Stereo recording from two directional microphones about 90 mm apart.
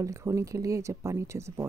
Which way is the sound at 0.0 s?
35° right (ahead or behind).